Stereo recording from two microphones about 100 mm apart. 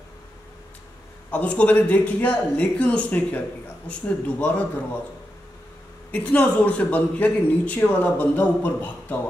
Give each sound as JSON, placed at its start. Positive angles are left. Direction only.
{"t": 1.3, "sound": "a man's voice", "side_deg": 10}
{"t": 6.1, "sound": "a man's voice", "side_deg": 15}